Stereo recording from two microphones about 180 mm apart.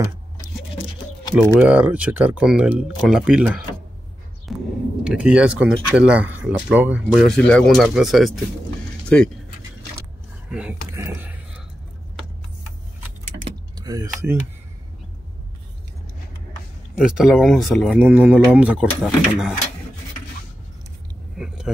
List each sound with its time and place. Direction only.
1.5 s speech: 5° right (ahead or behind)
4.5 s a sound: centre (ahead or behind)
5.0 s speech: 5° right (ahead or behind)
10.5 s speech: 5° right (ahead or behind)
10.9 s a sound: 15° right (ahead or behind)
13.7 s speech: 20° right (ahead or behind)
16.9 s speech: 5° right (ahead or behind)
21.4 s vehicle: 5° right (ahead or behind)